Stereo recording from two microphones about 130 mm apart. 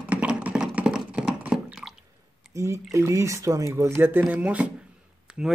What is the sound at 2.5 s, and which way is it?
Speech, 20° right (ahead or behind).